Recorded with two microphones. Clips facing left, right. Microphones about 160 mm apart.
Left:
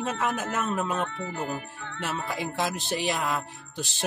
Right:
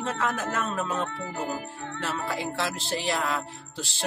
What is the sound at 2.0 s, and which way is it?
Speech, 20° left (ahead or behind).